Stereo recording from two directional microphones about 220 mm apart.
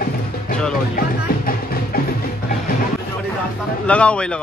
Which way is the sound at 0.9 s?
40° left (ahead or behind).